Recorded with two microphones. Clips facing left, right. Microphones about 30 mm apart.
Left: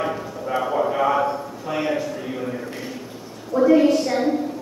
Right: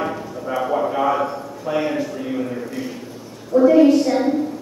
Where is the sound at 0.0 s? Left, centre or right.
Centre.